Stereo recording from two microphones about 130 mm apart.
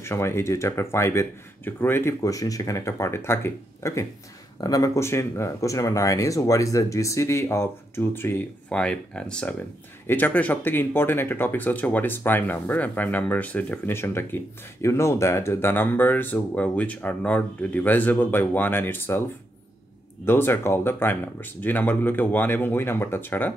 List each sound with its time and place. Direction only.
0.0 s speech: 20° left (ahead or behind)
20.2 s speech: 15° left (ahead or behind)